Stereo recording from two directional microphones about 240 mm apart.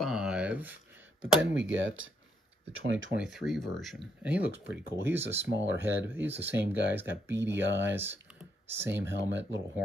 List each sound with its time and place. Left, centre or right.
0.0 s a sound: centre
1.2 s speech: right
3.2 s speech: centre
5.4 s speech: right
5.8 s speech: centre
9.3 s speech: right